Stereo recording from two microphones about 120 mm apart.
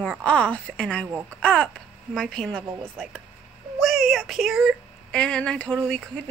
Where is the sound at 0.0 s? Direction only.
5° left (ahead or behind).